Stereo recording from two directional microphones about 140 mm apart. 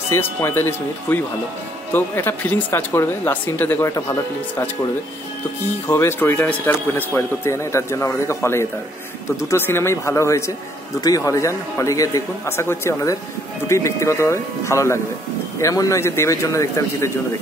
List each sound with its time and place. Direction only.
0.1 s speech: 20° left (ahead or behind)
5.9 s speech: 20° left (ahead or behind)